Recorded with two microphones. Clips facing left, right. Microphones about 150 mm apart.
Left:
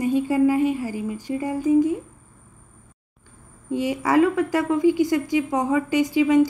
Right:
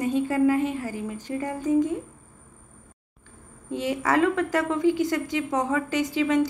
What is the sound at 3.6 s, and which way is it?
A woman's voice, 10° left (ahead or behind).